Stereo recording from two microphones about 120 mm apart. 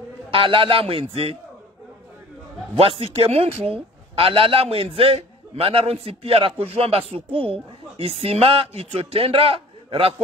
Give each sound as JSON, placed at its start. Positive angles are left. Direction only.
{"t": 0.3, "sound": "speech", "side_deg": -45}
{"t": 2.7, "sound": "speech", "side_deg": -50}